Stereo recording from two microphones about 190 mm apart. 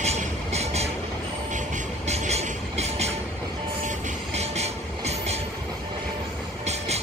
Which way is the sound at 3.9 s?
40° right (ahead or behind).